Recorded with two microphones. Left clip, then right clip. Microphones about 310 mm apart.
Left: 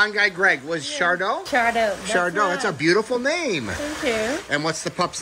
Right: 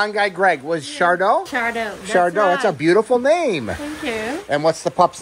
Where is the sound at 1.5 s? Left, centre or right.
Centre.